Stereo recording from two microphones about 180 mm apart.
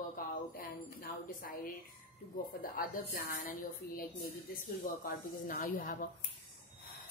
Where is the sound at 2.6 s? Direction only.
55° left (ahead or behind).